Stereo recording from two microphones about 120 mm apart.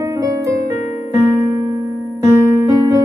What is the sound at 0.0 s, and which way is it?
Keyboard, 25° right (ahead or behind).